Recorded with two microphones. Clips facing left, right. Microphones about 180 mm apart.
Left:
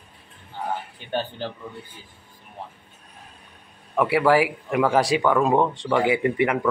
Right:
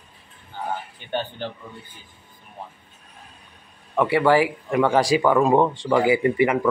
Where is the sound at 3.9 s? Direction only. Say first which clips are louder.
Right 1 dB; centre (ahead or behind).